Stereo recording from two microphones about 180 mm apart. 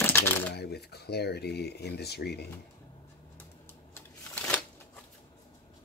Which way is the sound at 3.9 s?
10° left (ahead or behind).